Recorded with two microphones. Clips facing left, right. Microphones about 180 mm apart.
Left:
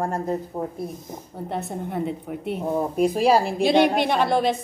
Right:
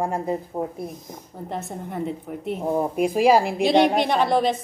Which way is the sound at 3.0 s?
10° right (ahead or behind).